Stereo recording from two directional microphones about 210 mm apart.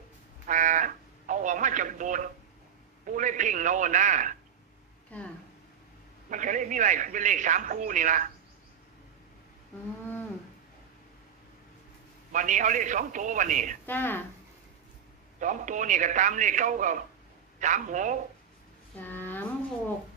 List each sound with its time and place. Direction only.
0.5 s a sound: 35° right (ahead or behind)
3.1 s a man's voice: 35° right (ahead or behind)
5.1 s speech: 5° left (ahead or behind)
6.3 s a man's voice: 35° right (ahead or behind)
12.3 s a man's voice: 35° right (ahead or behind)
13.8 s speech: 10° left (ahead or behind)
15.4 s a man's voice: 35° right (ahead or behind)
18.9 s a sound: 10° left (ahead or behind)